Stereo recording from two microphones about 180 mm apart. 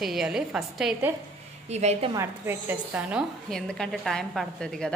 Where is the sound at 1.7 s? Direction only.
35° right (ahead or behind).